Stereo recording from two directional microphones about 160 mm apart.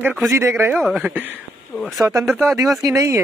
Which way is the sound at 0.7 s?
Centre (ahead or behind).